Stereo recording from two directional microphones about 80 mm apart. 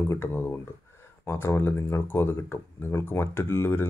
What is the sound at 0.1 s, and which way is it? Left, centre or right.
Speech, left.